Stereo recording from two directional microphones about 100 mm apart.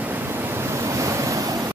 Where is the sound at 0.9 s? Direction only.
30° right (ahead or behind).